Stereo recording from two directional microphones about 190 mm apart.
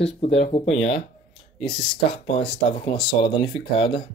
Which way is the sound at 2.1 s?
30° left (ahead or behind).